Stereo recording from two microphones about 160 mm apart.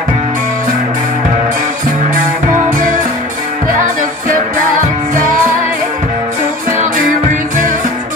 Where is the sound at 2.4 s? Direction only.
55° right (ahead or behind).